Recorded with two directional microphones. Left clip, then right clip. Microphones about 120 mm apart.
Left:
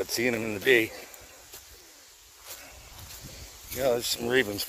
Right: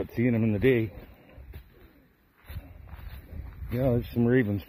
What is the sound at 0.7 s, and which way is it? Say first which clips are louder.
Speech: left 6 dB; 45° left (ahead or behind).